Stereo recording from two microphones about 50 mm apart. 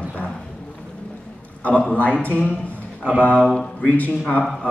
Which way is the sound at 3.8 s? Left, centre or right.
Left.